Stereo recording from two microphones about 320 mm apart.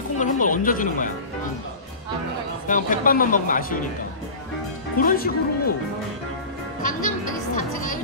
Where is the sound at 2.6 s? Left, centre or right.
Left.